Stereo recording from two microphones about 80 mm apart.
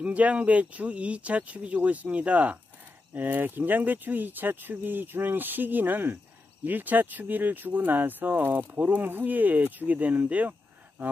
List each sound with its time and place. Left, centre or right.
0.0 s speech: centre